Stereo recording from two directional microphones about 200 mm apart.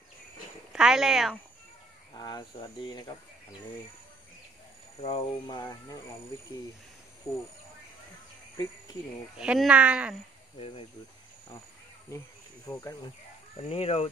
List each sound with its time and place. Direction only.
0.7 s speech: centre (ahead or behind)
2.1 s speech: 20° left (ahead or behind)
5.0 s speech: 30° left (ahead or behind)
5.6 s speech: 15° left (ahead or behind)
7.3 s speech: 15° left (ahead or behind)
9.4 s speech: 5° right (ahead or behind)
13.6 s speech: 30° left (ahead or behind)